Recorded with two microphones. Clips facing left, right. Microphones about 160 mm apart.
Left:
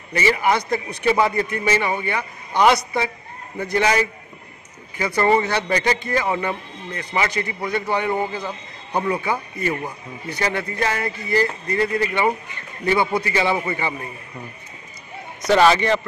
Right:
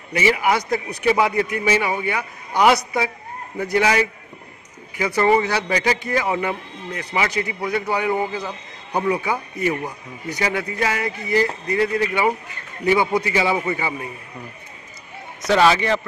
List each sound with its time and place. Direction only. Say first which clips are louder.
0.1 s a man's voice: even; 10° right (ahead or behind)
15.4 s a man's voice: left 1 dB; centre (ahead or behind)